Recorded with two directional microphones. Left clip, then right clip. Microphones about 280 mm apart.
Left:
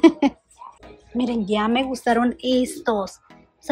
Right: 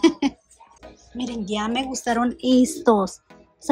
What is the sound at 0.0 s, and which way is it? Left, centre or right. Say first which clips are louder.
Speech: left 4 dB; centre.